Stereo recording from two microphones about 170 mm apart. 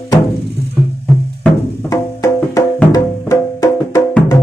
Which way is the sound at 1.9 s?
20° left (ahead or behind).